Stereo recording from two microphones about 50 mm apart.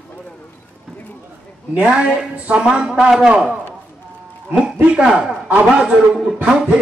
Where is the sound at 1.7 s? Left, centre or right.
Centre.